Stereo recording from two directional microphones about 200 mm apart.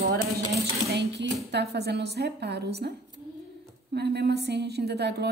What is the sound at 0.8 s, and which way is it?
A woman's voice, 60° right (ahead or behind).